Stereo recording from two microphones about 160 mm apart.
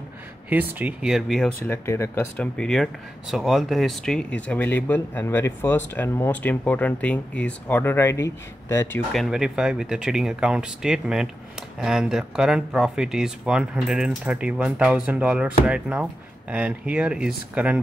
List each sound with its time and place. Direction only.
0.5 s speech: 10° right (ahead or behind)
1.7 s speech: 15° left (ahead or behind)
9.1 s speech: centre (ahead or behind)